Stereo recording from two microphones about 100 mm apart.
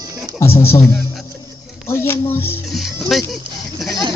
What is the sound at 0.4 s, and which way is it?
Speech, 25° left (ahead or behind).